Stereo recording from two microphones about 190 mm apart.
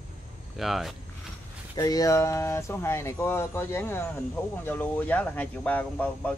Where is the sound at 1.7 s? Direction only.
20° left (ahead or behind).